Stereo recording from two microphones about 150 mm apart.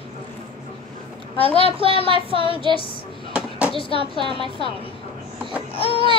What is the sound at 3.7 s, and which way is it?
Speech, 40° left (ahead or behind).